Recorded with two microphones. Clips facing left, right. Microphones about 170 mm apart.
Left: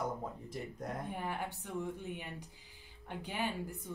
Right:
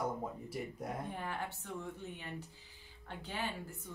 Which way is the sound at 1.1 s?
15° left (ahead or behind).